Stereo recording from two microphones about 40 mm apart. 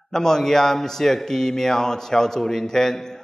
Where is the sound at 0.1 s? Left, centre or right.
Centre.